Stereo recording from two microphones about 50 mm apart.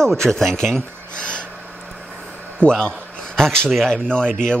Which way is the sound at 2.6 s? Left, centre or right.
Centre.